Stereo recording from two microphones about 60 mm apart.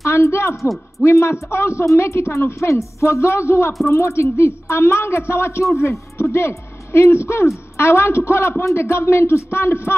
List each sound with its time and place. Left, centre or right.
0.0 s a man's voice: left
0.6 s a man's voice: centre
1.0 s a woman's voice: left